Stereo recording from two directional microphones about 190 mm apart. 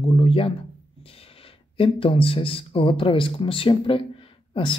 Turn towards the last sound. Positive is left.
turn(degrees=25)  # may be behind; listen again after turning